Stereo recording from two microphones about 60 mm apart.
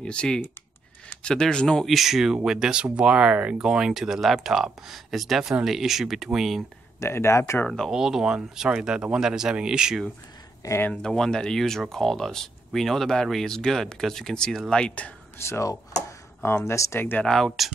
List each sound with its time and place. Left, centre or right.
0.0 s speech: centre
1.9 s speech: centre
7.0 s speech: left
7.6 s speech: centre
7.9 s speech: centre
10.9 s speech: centre
15.4 s speech: left
16.4 s speech: left
16.7 s speech: left
17.2 s speech: centre